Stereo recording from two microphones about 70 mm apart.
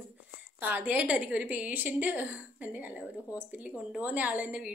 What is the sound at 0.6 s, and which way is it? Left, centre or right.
A woman's voice, right.